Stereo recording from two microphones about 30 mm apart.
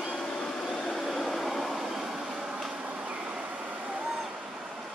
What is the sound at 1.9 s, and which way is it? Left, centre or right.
Train, centre.